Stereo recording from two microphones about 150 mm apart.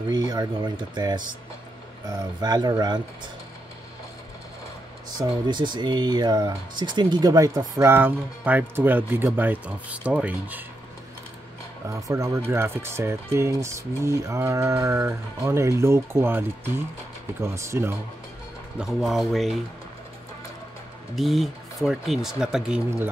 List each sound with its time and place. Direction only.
0.1 s speech: 25° right (ahead or behind)
5.5 s speech: 30° right (ahead or behind); by 10.6 s 10° right (ahead or behind)
11.9 s speech: 20° right (ahead or behind)
18.8 s speech: centre (ahead or behind)
21.1 s speech: centre (ahead or behind)